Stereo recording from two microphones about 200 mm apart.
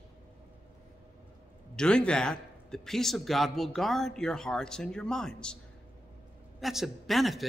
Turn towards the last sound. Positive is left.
turn(degrees=0)  # may be behind; listen again after turning